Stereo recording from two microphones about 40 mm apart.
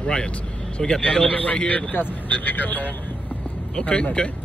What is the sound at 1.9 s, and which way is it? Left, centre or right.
Speech, left.